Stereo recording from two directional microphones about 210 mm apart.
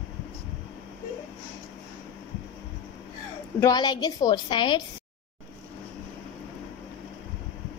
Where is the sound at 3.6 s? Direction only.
20° left (ahead or behind).